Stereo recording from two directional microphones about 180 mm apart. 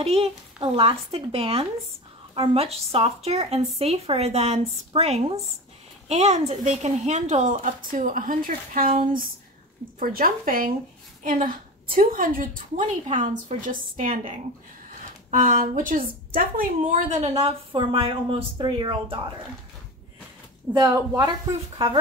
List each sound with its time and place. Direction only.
0.0 s a woman's voice: 35° right (ahead or behind); by 17.2 s 50° right (ahead or behind)
17.2 s a woman's voice: 35° right (ahead or behind)
20.7 s a woman's voice: 20° right (ahead or behind)